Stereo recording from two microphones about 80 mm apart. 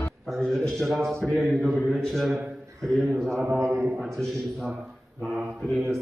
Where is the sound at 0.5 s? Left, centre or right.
Centre.